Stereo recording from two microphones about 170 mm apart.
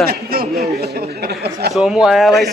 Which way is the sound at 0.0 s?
60° right (ahead or behind).